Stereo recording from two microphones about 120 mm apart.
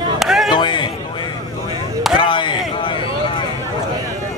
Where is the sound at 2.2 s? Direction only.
45° left (ahead or behind).